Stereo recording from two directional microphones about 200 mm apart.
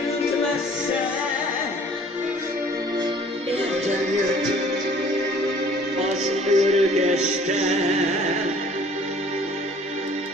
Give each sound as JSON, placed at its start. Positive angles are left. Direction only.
{"t": 6.2, "sound": "music", "side_deg": -35}